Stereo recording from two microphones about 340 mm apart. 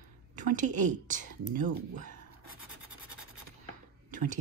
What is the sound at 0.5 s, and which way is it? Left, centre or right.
Speech, right.